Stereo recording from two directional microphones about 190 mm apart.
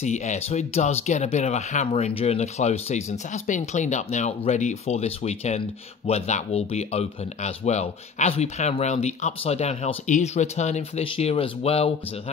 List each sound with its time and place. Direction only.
0.0 s speech: 40° left (ahead or behind)